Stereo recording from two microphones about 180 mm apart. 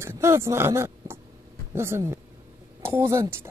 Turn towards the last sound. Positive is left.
turn(degrees=-15)  # may be behind; listen again after turning